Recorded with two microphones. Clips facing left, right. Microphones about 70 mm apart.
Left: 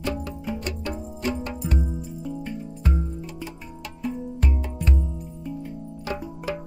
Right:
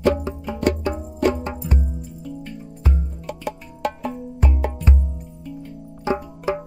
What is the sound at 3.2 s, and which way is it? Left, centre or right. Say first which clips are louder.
Music: right 6 dB; right.